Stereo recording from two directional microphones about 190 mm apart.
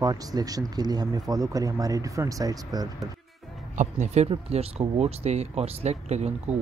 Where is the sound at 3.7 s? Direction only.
40° right (ahead or behind).